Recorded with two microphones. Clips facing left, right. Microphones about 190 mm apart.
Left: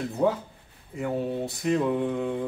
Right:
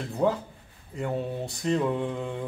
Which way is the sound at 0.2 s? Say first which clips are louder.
Even; 5° right (ahead or behind).